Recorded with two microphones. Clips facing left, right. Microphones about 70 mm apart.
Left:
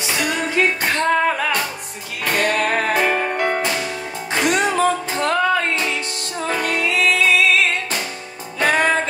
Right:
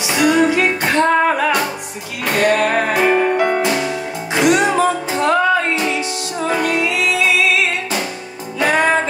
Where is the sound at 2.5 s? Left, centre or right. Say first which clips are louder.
Right 5 dB; right.